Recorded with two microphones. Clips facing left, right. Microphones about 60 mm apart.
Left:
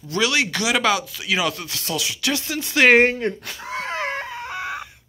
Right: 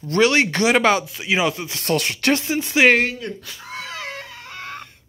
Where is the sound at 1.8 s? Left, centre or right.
Right.